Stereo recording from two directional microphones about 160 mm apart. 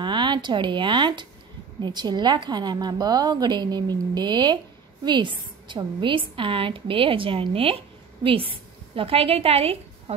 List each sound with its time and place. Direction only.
0.0 s a woman's voice: 30° right (ahead or behind)